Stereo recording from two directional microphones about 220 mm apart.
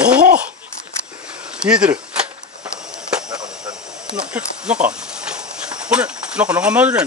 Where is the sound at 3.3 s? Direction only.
20° right (ahead or behind).